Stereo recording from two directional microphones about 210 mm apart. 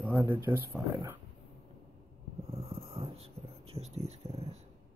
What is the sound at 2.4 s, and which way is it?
Dog, 30° right (ahead or behind).